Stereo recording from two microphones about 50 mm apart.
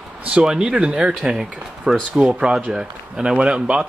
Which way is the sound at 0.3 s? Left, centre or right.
Centre.